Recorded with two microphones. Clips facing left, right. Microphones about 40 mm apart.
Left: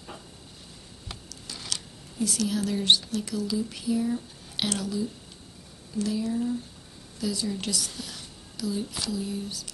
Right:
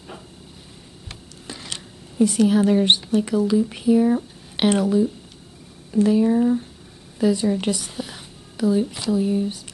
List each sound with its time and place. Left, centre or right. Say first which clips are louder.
2.1 s speech: right 11 dB; right